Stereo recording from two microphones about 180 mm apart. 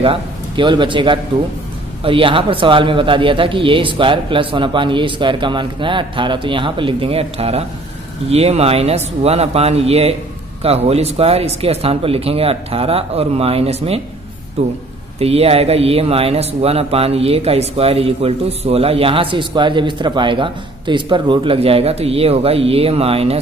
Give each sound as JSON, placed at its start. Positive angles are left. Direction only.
{"t": 0.0, "sound": "a man's voice", "side_deg": -30}